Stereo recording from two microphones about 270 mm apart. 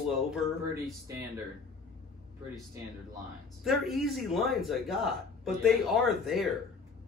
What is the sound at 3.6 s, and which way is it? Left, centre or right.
A man's voice, centre.